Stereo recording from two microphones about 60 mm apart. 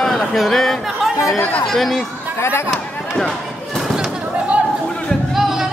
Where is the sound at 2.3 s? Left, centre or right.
Left.